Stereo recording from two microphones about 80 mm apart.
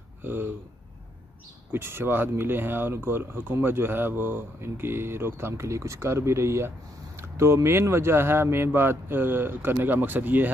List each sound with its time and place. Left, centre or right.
0.2 s speech: right
1.7 s speech: right